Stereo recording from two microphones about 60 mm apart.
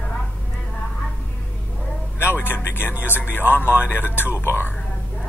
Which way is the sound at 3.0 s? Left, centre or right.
Left.